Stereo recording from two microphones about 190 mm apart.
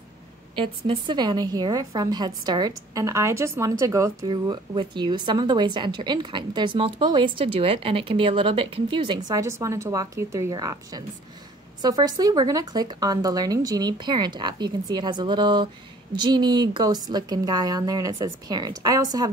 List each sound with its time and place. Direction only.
0.6 s a woman's voice: 25° right (ahead or behind)